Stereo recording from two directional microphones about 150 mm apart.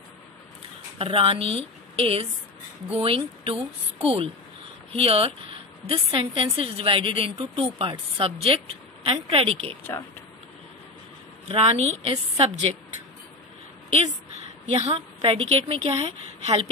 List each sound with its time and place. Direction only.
0.9 s a woman's voice: 40° right (ahead or behind)
11.4 s a woman's voice: 40° right (ahead or behind)
14.8 s a woman's voice: 40° right (ahead or behind)